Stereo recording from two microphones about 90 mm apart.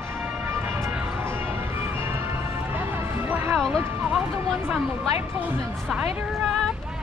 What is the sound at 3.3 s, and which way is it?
Music, 20° right (ahead or behind).